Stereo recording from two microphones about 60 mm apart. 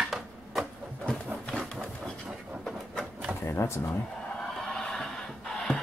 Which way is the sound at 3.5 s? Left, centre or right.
Left.